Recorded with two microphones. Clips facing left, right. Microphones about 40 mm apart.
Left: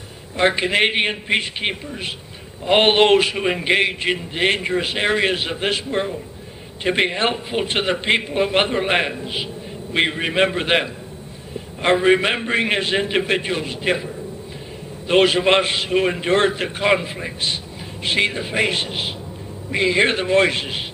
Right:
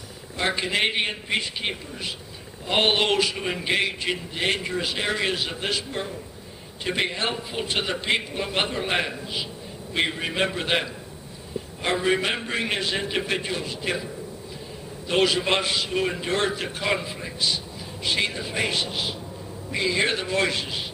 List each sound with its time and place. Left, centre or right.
0.4 s a man's voice: left
15.0 s a man's voice: left